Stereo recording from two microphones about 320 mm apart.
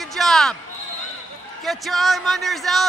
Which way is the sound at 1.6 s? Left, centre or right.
Centre.